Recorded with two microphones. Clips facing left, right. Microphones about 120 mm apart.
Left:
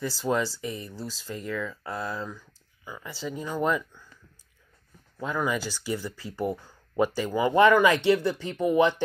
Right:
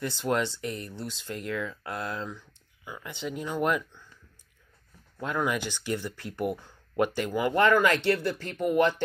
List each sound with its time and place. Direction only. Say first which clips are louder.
0.0 s speech: left 1 dB; centre (ahead or behind)
5.2 s speech: left 1 dB; centre (ahead or behind)
7.5 s speech: left 4 dB; 15° left (ahead or behind)